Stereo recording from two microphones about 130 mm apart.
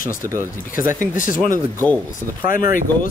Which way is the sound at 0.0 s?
90° left.